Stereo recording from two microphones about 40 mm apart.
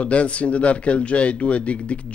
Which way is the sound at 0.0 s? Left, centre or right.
Left.